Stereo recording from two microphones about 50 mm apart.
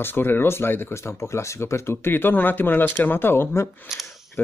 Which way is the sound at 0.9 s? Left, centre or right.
Left.